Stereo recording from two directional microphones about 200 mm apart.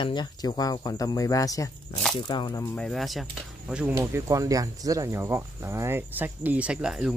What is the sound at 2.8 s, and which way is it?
Speech, centre (ahead or behind).